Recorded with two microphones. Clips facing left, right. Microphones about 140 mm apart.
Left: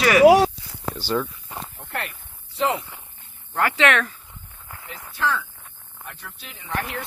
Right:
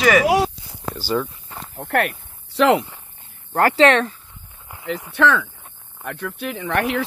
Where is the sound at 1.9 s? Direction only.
65° right (ahead or behind).